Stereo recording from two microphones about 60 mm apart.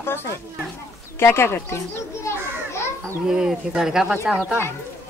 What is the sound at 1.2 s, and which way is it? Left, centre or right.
A child's voice, left.